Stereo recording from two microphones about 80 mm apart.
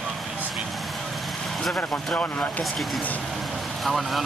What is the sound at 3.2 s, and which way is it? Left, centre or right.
Vehicle, centre.